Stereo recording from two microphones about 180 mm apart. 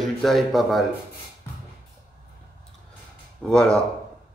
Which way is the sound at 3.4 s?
5° left (ahead or behind).